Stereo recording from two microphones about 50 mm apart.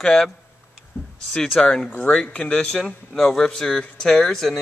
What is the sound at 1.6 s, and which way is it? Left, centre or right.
Speech, centre.